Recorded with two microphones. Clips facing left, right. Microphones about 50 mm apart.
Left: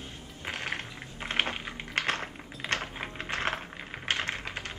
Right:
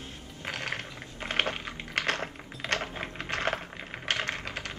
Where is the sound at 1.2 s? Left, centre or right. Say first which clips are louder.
Right 1 dB; left.